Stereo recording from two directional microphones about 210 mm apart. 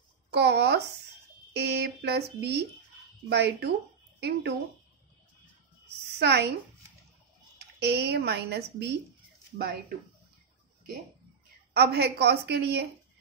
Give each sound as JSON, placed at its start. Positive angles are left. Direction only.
{"t": 0.3, "sound": "speech", "side_deg": -50}
{"t": 6.1, "sound": "a woman's voice", "side_deg": -50}
{"t": 7.5, "sound": "speech", "side_deg": -50}
{"t": 11.7, "sound": "speech", "side_deg": -50}